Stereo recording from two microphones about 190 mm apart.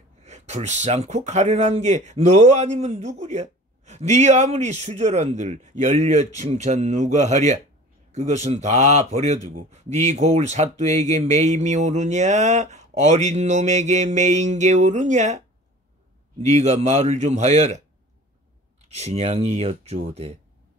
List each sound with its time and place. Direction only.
0.2 s speech: 35° right (ahead or behind)
18.9 s speech: 35° right (ahead or behind)